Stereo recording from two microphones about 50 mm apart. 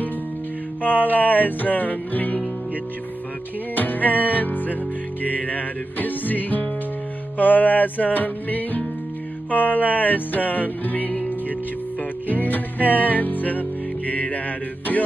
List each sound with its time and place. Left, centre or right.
1.0 s music: left
3.7 s music: left